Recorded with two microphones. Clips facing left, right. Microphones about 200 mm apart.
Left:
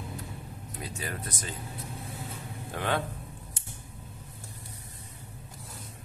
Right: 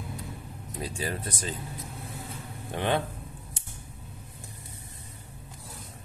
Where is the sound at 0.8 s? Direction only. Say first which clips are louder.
Right 4 dB; 30° right (ahead or behind).